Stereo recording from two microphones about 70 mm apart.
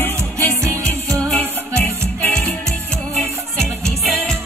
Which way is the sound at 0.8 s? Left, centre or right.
Centre.